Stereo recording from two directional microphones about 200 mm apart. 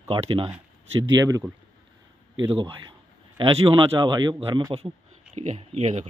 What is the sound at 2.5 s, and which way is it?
Speech, 25° right (ahead or behind).